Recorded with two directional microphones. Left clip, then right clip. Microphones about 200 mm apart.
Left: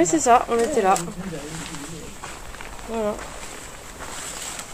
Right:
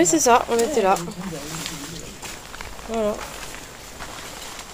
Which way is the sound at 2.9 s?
15° right (ahead or behind).